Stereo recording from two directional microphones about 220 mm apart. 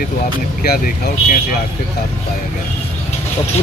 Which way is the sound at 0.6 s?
40° left (ahead or behind).